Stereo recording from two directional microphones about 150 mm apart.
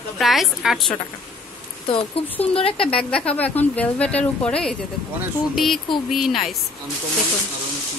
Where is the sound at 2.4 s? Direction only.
40° left (ahead or behind).